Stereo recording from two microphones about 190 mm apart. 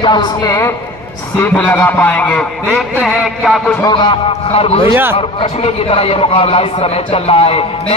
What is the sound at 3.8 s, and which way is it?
A man's voice, 25° left (ahead or behind).